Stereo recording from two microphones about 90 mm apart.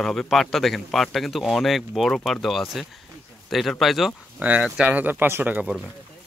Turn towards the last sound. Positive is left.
turn(degrees=-20)  # may be behind; listen again after turning